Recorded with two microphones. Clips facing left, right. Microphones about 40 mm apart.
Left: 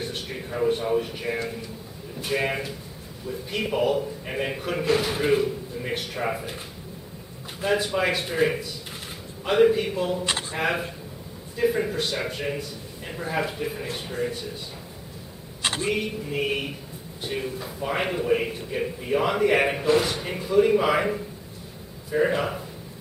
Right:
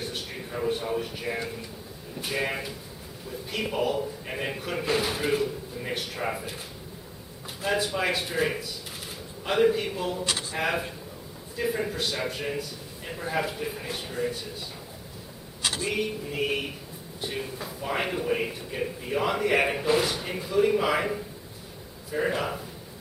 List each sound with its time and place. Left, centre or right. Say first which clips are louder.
0.0 s a man's voice: left 3 dB; centre
7.6 s a man's voice: left 3 dB; centre
15.6 s a sound: left 3 dB; left
15.9 s a man's voice: left 2 dB; centre